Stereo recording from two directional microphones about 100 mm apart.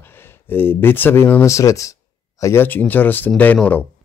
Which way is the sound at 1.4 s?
30° left (ahead or behind).